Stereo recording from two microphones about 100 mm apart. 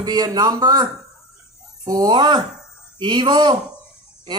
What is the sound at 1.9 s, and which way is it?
A man's voice, 45° right (ahead or behind).